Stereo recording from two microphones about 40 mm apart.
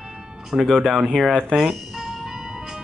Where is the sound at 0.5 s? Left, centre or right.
Right.